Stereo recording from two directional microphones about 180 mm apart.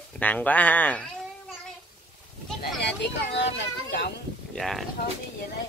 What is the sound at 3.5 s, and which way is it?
Speech, 70° left (ahead or behind).